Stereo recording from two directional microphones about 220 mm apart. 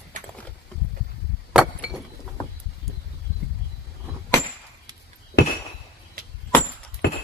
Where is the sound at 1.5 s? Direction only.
Centre (ahead or behind).